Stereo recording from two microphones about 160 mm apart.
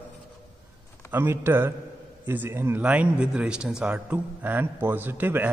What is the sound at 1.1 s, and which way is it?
A man's voice, 15° right (ahead or behind).